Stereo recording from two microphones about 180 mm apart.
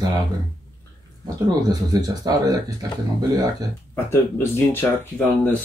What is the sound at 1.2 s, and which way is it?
Speech, 20° right (ahead or behind).